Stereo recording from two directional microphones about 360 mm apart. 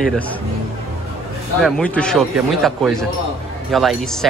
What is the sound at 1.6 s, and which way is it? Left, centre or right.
Speech, centre.